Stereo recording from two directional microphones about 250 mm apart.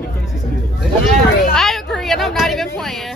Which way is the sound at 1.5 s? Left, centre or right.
Centre.